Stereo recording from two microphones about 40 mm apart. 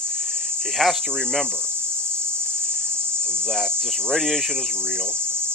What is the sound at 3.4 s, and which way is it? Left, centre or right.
Cricket, centre.